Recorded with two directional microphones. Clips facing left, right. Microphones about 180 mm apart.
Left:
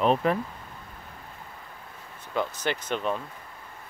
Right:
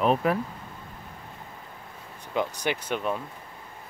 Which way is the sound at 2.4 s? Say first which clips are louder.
Right 1 dB; 10° right (ahead or behind).